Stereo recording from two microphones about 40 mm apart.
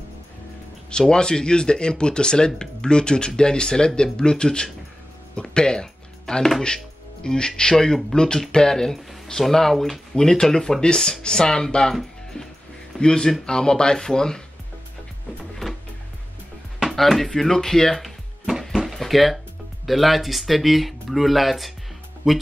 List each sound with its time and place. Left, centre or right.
0.8 s speech: centre
5.3 s music: left
7.2 s speech: centre
11.9 s speech: centre
13.0 s speech: centre
16.9 s speech: centre
18.5 s music: centre
18.9 s speech: centre